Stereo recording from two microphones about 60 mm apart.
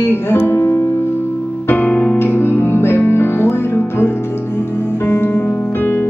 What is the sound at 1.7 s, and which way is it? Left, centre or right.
Music, left.